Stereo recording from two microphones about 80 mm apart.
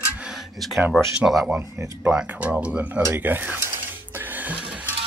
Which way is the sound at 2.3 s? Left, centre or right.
Centre.